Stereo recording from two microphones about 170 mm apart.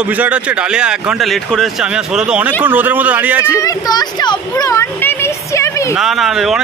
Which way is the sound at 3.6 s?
20° left (ahead or behind).